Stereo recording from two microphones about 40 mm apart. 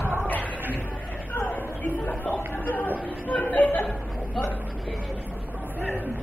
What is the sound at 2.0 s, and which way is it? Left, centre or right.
Chatter, left.